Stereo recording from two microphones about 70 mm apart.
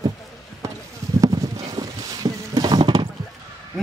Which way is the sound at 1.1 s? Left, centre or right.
Right.